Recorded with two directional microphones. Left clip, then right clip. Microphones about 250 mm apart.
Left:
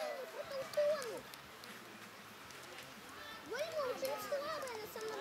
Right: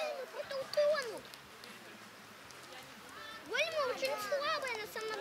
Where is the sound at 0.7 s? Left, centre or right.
Centre.